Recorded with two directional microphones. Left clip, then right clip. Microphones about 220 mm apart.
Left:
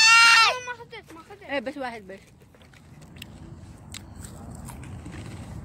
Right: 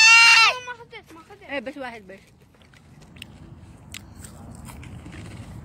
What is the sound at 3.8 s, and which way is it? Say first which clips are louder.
Biting: right 2 dB; centre (ahead or behind).